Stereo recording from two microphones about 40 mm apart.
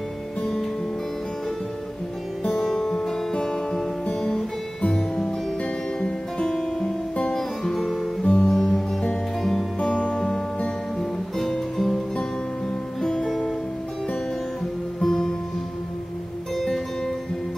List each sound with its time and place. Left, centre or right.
2.6 s music: centre
4.8 s music: left
6.4 s guitar: centre
8.2 s music: centre
8.5 s music: centre
9.8 s music: left
11.0 s music: centre
15.0 s music: centre
16.5 s music: centre